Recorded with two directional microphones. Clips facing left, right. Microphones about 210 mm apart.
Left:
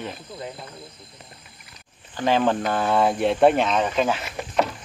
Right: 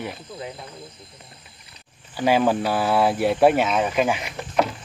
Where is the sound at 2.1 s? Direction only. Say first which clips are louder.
Right 1 dB; 10° right (ahead or behind).